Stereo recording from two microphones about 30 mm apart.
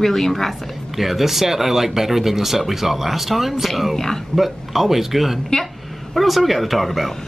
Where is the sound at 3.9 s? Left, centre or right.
Centre.